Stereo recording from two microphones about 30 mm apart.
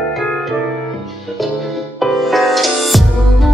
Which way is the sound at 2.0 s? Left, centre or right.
Centre.